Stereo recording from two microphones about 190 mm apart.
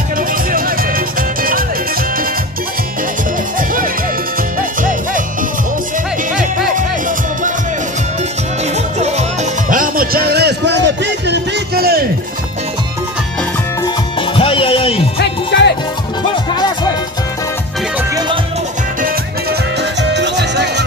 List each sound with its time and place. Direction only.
0.3 s music: 50° right (ahead or behind)
3.5 s music: 45° right (ahead or behind)
6.7 s music: 45° right (ahead or behind)
9.0 s music: 35° right (ahead or behind); by 12.1 s 55° right (ahead or behind)
13.8 s music: 25° left (ahead or behind)
15.1 s music: 60° left (ahead or behind)
16.5 s music: 20° left (ahead or behind)
19.8 s music: 65° right (ahead or behind)